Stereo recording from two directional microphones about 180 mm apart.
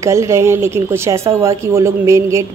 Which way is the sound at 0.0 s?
15° right (ahead or behind).